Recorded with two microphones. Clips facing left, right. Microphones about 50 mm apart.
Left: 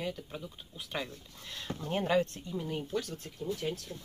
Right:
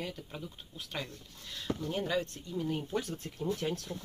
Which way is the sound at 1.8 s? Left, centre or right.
Left.